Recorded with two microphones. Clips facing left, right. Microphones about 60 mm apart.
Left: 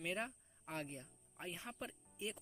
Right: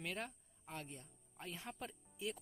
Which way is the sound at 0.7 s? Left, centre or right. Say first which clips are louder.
Left 4 dB; left.